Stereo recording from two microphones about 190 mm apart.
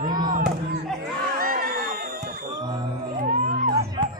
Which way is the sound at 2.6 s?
25° right (ahead or behind).